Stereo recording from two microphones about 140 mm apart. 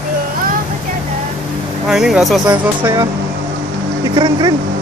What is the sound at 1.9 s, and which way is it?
Speech, 5° right (ahead or behind).